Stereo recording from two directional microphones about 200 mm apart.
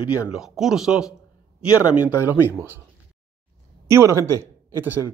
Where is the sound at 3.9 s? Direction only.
15° right (ahead or behind).